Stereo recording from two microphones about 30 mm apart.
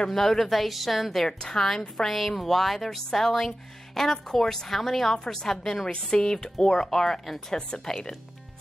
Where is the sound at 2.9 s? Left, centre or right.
Centre.